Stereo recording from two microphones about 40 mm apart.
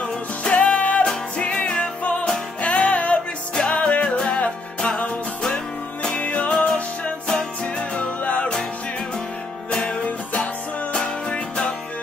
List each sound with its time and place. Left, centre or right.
0.4 s music: left
6.1 s music: left
7.6 s music: left
9.7 s music: left
10.0 s music: left